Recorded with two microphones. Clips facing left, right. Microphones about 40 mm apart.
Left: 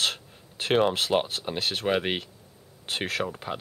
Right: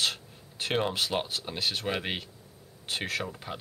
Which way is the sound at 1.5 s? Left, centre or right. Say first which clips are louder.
Left 1 dB; left.